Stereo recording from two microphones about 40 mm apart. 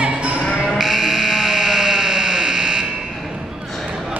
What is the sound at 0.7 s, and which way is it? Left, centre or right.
Sheep, centre.